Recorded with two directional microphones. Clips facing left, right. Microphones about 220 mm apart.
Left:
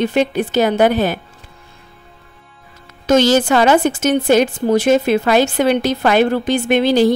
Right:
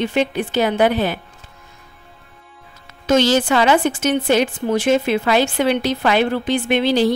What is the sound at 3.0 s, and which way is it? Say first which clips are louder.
A woman's voice: left 3 dB; 45° left (ahead or behind).